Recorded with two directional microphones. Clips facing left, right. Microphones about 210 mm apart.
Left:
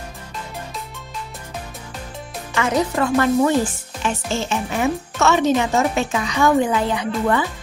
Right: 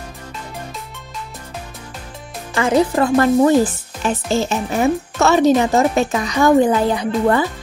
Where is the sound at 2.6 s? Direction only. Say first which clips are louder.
Right 4 dB; 30° right (ahead or behind).